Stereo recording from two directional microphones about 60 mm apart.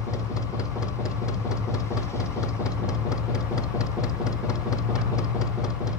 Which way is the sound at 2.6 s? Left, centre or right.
Left.